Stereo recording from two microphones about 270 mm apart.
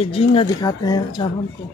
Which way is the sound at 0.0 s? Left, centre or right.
Left.